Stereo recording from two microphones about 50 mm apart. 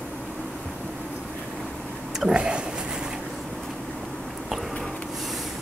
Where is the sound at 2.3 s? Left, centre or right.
Centre.